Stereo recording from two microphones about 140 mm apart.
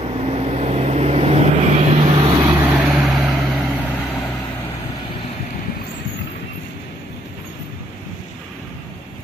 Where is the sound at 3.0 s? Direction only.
Centre (ahead or behind).